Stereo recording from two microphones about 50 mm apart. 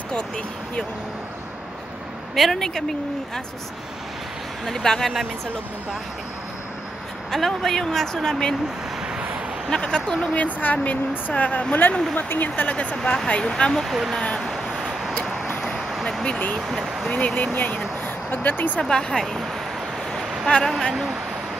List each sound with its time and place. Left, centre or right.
2.3 s speech: centre
4.6 s speech: centre
7.2 s speech: centre
9.7 s speech: centre
10.3 s speech: left
11.9 s speech: centre
12.4 s speech: left
12.9 s speech: centre
14.4 s vehicle: centre
15.9 s a sound: centre
16.6 s speech: centre
17.6 s speech: left
18.8 s speech: centre
20.4 s speech: centre